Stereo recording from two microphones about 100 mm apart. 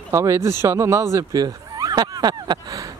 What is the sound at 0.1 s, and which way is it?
Speech, 30° right (ahead or behind).